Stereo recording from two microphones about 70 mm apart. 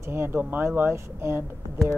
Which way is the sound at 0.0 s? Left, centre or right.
Right.